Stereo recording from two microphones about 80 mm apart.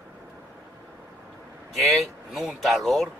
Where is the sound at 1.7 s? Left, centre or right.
Centre.